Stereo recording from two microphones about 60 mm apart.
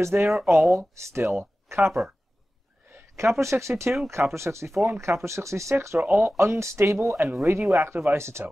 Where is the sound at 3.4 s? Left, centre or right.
Right.